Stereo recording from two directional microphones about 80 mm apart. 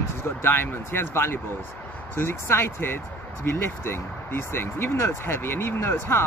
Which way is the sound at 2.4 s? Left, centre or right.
Left.